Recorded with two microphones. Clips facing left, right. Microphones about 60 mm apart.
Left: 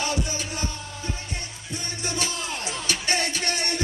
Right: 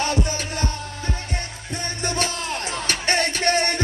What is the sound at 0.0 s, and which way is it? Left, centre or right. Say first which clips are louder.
Music: right 4 dB; right.